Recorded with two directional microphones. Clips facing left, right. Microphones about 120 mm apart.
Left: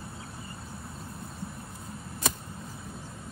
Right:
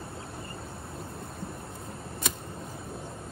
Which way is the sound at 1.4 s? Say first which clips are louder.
Right 2 dB; 25° right (ahead or behind).